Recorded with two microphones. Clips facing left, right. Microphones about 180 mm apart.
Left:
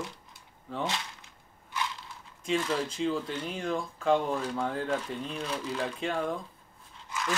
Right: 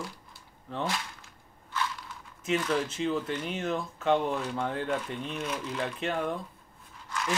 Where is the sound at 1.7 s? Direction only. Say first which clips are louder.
Right 1 dB; 20° left (ahead or behind).